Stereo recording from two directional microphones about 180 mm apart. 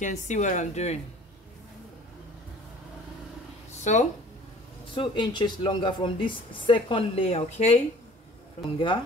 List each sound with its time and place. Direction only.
0.0 s speech: 40° left (ahead or behind)
3.9 s speech: 40° left (ahead or behind)
4.9 s speech: 25° left (ahead or behind)
8.7 s speech: 25° left (ahead or behind)